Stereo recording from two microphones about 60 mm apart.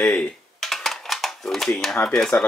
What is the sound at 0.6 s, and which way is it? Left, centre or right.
Dishes, centre.